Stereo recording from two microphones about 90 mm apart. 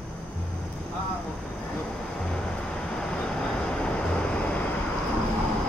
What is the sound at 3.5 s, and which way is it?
Vehicle, 10° left (ahead or behind).